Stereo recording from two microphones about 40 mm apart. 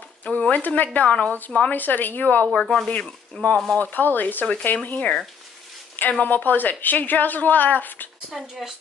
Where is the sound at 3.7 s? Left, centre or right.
Left.